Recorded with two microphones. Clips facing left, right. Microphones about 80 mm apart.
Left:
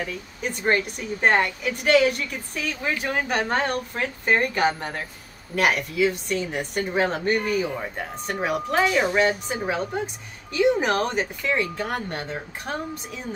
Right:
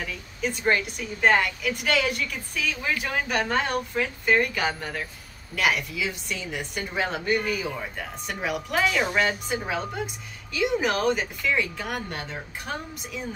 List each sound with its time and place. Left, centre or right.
0.4 s a woman's voice: left